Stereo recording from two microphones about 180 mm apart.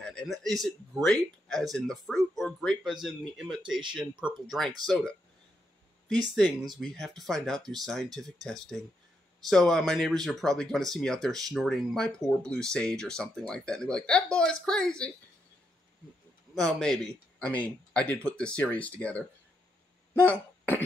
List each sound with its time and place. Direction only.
0.0 s speech: 5° left (ahead or behind)
6.8 s speech: centre (ahead or behind)
16.5 s speech: centre (ahead or behind)
20.2 s throat clearing: 10° left (ahead or behind)